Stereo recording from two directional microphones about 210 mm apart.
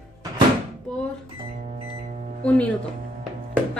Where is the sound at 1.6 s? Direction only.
35° right (ahead or behind).